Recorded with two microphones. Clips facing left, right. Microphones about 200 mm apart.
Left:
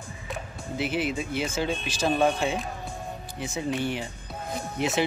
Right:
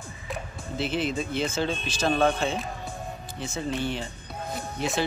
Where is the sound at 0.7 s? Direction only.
10° left (ahead or behind).